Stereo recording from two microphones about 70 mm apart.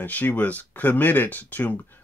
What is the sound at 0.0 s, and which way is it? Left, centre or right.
Speech, left.